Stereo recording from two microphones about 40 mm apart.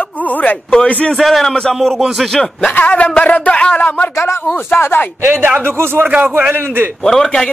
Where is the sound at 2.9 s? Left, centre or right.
Left.